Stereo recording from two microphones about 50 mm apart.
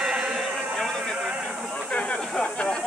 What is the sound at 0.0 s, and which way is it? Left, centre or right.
Music, centre.